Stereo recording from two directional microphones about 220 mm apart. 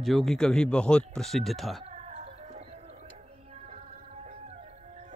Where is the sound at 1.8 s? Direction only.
30° right (ahead or behind).